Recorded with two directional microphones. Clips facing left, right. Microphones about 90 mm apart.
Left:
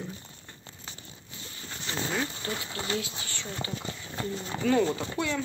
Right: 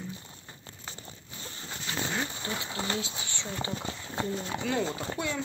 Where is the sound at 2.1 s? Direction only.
20° right (ahead or behind).